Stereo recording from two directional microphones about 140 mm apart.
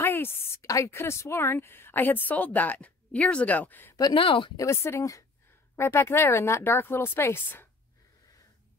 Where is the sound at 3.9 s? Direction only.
35° left (ahead or behind).